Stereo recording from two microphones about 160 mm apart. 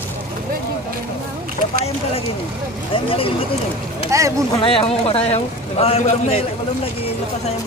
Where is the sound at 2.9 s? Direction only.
35° left (ahead or behind).